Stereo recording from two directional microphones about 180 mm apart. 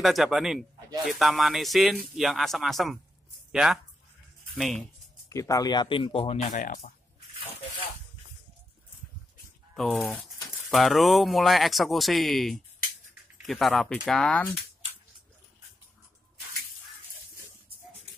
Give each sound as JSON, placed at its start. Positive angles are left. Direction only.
{"t": 0.0, "sound": "speech", "side_deg": 0}
{"t": 5.3, "sound": "speech", "side_deg": 20}
{"t": 9.8, "sound": "speech", "side_deg": 0}